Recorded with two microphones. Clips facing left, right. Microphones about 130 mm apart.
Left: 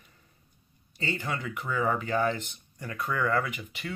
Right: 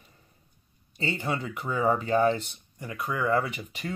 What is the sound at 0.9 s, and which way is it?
Speech, 25° right (ahead or behind).